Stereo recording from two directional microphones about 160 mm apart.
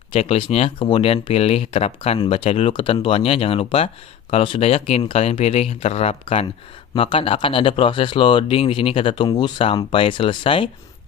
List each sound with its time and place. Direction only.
0.1 s speech: 40° left (ahead or behind)